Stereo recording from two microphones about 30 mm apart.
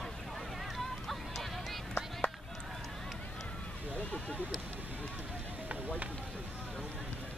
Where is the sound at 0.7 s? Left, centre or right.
Centre.